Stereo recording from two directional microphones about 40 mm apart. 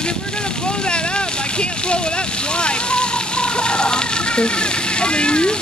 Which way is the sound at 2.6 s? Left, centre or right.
Left.